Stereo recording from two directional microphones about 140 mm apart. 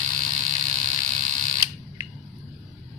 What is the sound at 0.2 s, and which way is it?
Camera, 60° right (ahead or behind).